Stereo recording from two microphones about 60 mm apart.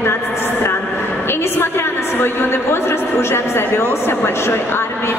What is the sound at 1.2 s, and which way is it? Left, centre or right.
A woman's voice, left.